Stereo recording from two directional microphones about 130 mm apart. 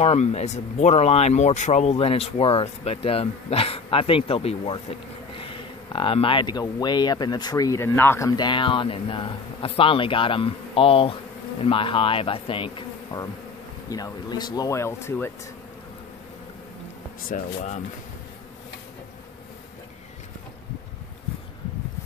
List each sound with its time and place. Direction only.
0.0 s speech: 55° left (ahead or behind); by 8.3 s 20° left (ahead or behind)
8.4 s speech: 40° left (ahead or behind)
11.6 s bee: 40° left (ahead or behind)
13.8 s speech: 30° left (ahead or behind)
17.3 s speech: 65° left (ahead or behind)